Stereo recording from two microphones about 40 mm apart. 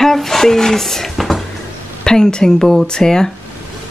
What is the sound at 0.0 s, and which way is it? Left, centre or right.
Speech, centre.